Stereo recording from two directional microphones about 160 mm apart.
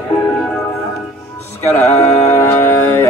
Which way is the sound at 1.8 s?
20° left (ahead or behind).